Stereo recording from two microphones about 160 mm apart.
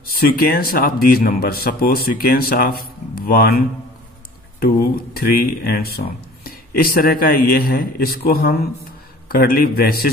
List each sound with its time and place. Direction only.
0.0 s a man's voice: 70° left (ahead or behind)
5.1 s a man's voice: 70° left (ahead or behind)